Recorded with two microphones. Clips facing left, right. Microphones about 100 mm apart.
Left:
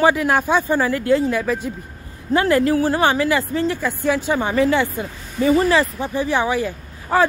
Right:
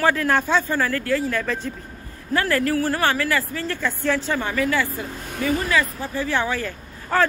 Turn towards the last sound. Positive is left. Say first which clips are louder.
# left 3 dB
turn(degrees=15)  # may be behind; listen again after turning